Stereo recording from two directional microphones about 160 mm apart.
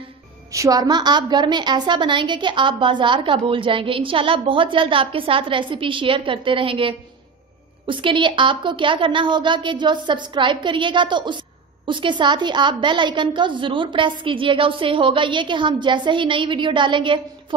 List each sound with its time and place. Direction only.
0.5 s a woman's voice: 20° right (ahead or behind)